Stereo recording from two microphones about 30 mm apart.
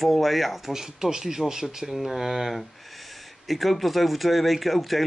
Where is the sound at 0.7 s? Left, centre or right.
Centre.